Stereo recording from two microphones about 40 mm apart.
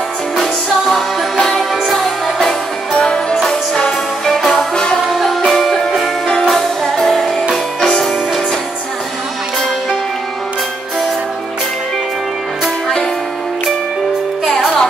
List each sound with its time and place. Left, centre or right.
0.4 s music: centre
2.9 s music: left
3.3 s music: centre
7.8 s music: centre
14.5 s music: centre